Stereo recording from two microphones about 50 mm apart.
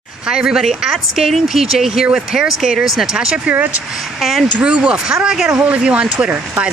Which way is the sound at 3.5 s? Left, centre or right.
Right.